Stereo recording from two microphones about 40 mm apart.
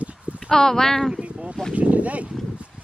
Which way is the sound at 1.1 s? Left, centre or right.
Right.